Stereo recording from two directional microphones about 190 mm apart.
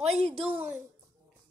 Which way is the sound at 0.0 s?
30° right (ahead or behind).